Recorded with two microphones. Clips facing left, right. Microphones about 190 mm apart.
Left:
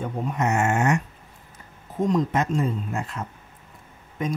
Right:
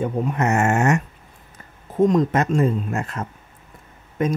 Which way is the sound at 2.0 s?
60° right (ahead or behind).